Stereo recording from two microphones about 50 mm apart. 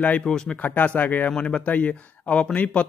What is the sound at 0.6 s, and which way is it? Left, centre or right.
Speech, left.